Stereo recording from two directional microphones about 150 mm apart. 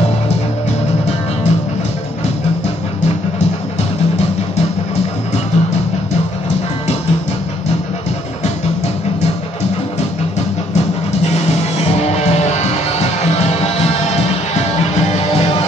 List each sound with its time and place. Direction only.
12.0 s music: 45° left (ahead or behind)
13.6 s music: 45° left (ahead or behind)